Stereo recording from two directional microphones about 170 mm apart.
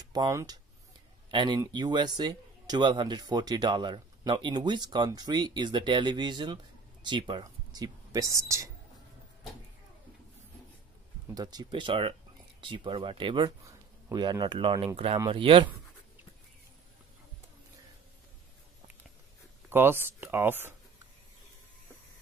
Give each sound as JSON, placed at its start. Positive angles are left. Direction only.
{"t": 0.1, "sound": "speech", "side_deg": -20}
{"t": 11.3, "sound": "speech", "side_deg": -25}
{"t": 19.7, "sound": "speech", "side_deg": -10}